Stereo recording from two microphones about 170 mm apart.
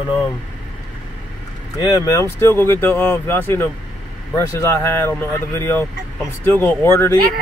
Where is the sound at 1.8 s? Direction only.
20° left (ahead or behind).